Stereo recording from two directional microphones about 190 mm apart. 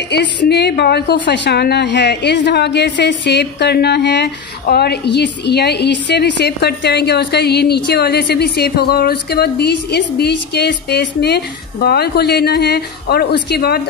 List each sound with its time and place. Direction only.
0.1 s a woman's voice: 65° left (ahead or behind)